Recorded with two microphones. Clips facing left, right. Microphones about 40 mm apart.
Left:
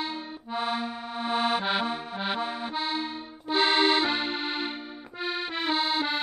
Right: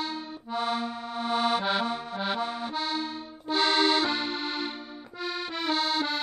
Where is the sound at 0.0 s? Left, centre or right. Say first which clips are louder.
Even; centre.